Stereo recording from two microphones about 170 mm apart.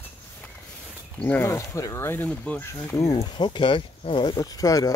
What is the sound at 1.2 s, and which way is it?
Speech, 10° left (ahead or behind).